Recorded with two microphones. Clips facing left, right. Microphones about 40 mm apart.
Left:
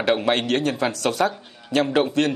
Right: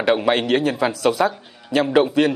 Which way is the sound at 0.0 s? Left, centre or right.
Centre.